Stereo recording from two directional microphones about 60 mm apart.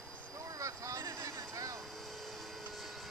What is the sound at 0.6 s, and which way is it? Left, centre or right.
Vehicle, right.